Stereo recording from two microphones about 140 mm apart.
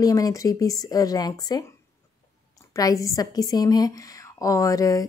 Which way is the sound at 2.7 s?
25° left (ahead or behind).